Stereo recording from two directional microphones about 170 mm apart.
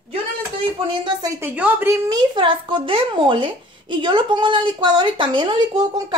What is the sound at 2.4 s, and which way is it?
Speech, 30° right (ahead or behind).